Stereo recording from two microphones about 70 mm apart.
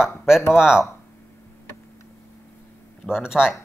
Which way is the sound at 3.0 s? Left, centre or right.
Centre.